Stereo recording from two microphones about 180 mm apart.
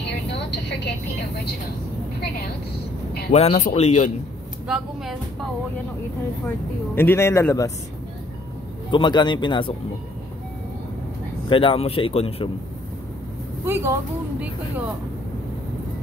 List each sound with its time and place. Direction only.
0.3 s vehicle: 70° left (ahead or behind)
3.3 s speech: 35° left (ahead or behind)
4.6 s speech: 5° right (ahead or behind)
7.0 s speech: 15° left (ahead or behind)
8.9 s speech: 25° left (ahead or behind)
11.4 s speech: 30° left (ahead or behind)
13.7 s a woman's voice: 15° right (ahead or behind)